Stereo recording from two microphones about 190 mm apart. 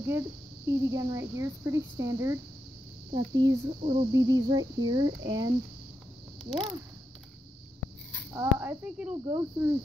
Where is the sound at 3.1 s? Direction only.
30° right (ahead or behind).